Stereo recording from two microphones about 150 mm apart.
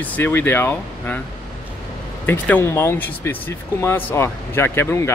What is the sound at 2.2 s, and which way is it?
Speech, 15° left (ahead or behind).